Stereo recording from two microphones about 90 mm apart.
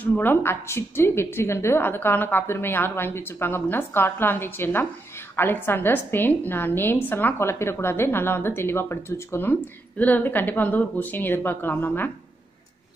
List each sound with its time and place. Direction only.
0.0 s a woman's voice: 20° left (ahead or behind)